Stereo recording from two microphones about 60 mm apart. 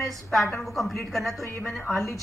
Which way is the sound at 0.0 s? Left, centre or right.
Centre.